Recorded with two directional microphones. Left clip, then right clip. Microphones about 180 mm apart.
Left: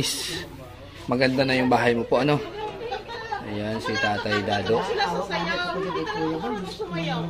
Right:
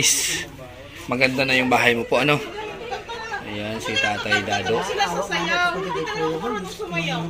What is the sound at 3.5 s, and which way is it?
Speech, 30° left (ahead or behind).